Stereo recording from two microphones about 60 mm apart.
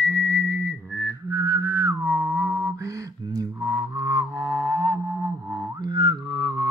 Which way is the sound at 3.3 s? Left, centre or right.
Right.